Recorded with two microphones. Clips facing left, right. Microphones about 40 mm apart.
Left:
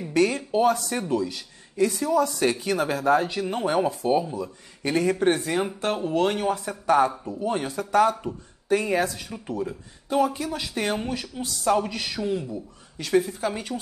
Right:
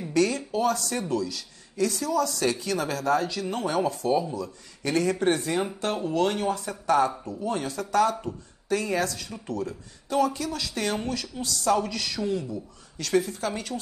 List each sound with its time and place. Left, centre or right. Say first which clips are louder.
0.1 s speech: left 2 dB; left